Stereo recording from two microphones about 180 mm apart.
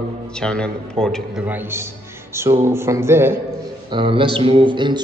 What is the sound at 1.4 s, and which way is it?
Music, 10° right (ahead or behind).